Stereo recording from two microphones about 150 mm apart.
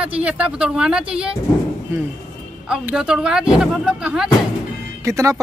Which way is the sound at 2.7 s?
10° right (ahead or behind).